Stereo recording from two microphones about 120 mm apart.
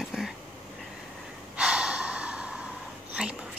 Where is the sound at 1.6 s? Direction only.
10° right (ahead or behind).